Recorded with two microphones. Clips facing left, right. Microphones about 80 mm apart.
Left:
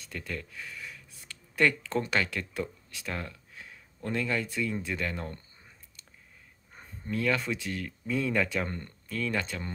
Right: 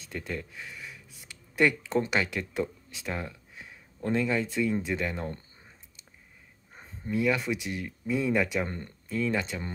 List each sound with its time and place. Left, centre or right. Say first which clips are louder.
0.0 s speech: right 3 dB; right
6.7 s speech: right 3 dB; centre